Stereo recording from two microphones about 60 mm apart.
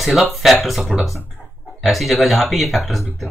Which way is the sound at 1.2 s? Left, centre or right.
Left.